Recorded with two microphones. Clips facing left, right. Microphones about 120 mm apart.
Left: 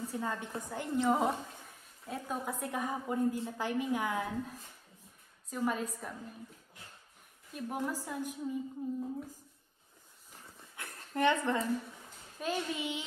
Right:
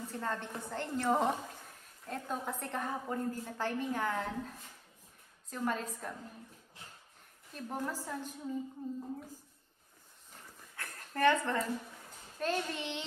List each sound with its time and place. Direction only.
0.0 s a woman's voice: 10° left (ahead or behind)
7.5 s a woman's voice: 10° left (ahead or behind)
10.8 s a sound: 20° left (ahead or behind)
12.4 s a woman's voice: 5° left (ahead or behind)